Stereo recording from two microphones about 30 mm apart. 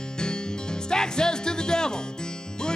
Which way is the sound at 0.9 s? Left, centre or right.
Left.